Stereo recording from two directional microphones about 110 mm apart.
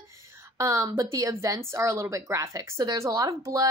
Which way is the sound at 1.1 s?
25° right (ahead or behind).